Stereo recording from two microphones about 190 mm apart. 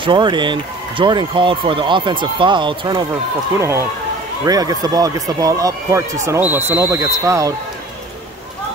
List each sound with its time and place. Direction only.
0.0 s speech: 25° right (ahead or behind)
3.5 s speech: 15° right (ahead or behind)